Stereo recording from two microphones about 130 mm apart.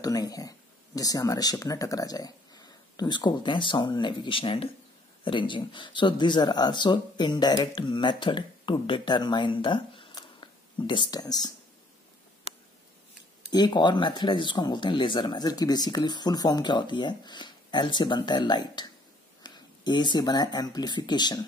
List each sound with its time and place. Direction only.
0.0 s speech: 30° left (ahead or behind)
13.5 s speech: 35° left (ahead or behind)